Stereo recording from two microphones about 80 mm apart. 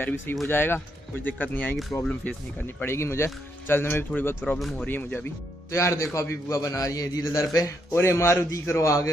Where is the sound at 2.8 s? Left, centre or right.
Left.